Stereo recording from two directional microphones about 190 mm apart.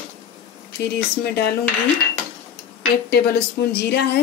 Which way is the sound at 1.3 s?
55° left (ahead or behind).